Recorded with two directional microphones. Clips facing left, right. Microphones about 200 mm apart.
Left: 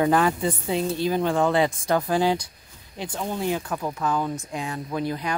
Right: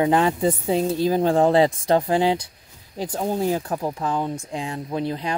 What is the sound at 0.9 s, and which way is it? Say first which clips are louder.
Speech: right 4 dB; 35° right (ahead or behind).